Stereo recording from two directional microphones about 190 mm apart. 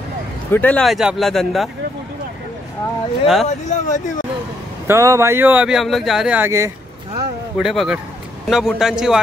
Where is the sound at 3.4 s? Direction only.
40° left (ahead or behind).